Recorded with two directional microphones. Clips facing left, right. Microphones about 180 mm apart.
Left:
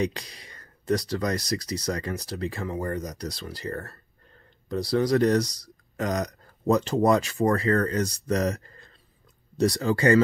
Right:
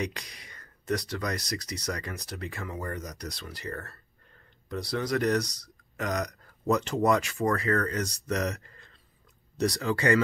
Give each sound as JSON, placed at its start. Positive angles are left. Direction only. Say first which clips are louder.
{"t": 0.0, "sound": "speech", "louder": "left 6 dB", "side_deg": 35}